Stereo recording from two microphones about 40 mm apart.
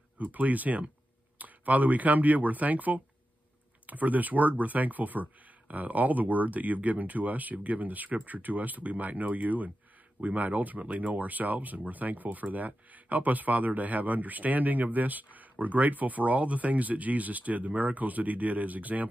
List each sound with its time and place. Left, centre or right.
0.2 s speech: right